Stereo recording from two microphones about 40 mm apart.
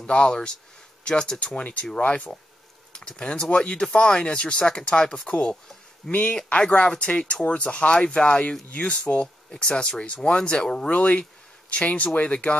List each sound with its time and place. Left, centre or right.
0.0 s speech: left
1.6 s speech: left
2.9 s speech: left
6.9 s speech: left
10.9 s speech: left